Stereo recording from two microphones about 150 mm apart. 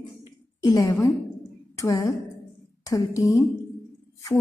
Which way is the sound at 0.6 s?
25° left (ahead or behind).